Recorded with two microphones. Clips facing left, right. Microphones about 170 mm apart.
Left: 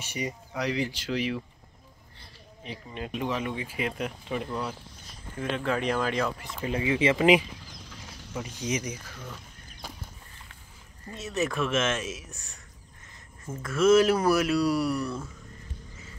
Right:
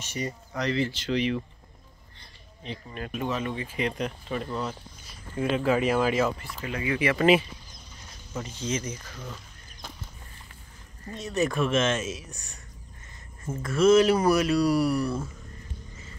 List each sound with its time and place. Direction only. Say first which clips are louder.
0.0 s speech: right 1 dB; 10° left (ahead or behind)
2.1 s a sound: left 3 dB; 10° left (ahead or behind)
2.9 s speech: even; 20° left (ahead or behind)
5.4 s speech: right 5 dB; 10° right (ahead or behind)
6.4 s speech: left 2 dB; 25° left (ahead or behind)
7.6 s a sound: left 4 dB; 90° left
8.4 s speech: even; 15° left (ahead or behind)
9.0 s speech: right 2 dB; centre (ahead or behind)
11.1 s speech: right 3 dB; 5° left (ahead or behind)
13.6 s speech: right 1 dB; centre (ahead or behind)